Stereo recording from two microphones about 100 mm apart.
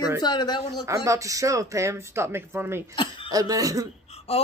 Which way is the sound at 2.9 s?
55° left (ahead or behind).